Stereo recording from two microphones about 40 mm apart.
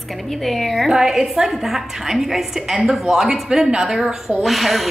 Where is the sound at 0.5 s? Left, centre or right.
Centre.